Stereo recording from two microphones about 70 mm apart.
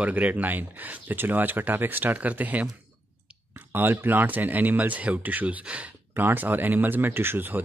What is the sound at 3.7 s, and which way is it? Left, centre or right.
Speech, right.